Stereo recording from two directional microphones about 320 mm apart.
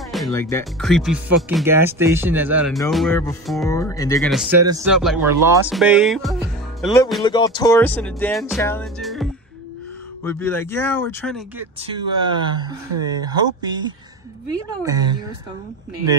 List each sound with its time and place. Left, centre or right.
0.1 s speech: centre
7.2 s speech: centre
11.8 s speech: centre